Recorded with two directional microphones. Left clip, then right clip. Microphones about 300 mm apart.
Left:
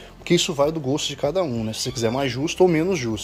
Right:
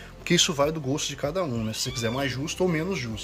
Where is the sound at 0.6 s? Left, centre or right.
Centre.